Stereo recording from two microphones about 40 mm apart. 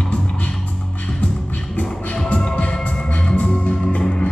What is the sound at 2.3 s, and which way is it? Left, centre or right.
Music, left.